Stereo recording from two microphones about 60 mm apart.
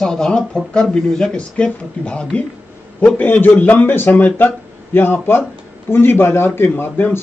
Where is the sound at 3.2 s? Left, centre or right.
Left.